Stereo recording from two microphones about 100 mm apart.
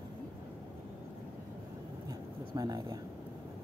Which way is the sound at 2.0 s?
40° right (ahead or behind).